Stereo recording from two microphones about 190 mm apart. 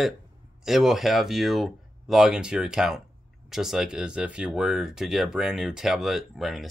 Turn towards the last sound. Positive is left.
turn(degrees=0)  # may be behind; listen again after turning